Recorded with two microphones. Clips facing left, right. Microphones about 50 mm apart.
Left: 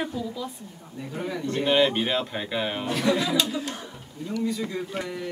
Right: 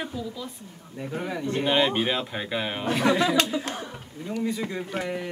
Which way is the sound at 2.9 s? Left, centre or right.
Right.